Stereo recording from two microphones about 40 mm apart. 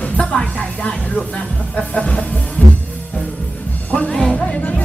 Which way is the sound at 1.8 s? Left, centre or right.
Left.